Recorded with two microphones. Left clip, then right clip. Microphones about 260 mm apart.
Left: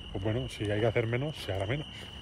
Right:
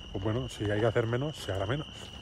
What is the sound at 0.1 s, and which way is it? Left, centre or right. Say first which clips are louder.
Speech: even; centre.